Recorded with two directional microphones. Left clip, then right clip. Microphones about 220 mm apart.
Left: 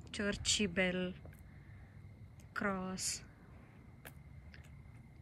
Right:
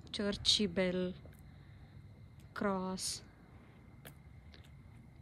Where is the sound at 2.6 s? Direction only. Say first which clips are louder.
Right 2 dB; 10° right (ahead or behind).